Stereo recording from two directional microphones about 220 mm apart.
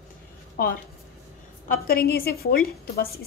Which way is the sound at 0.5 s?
40° left (ahead or behind).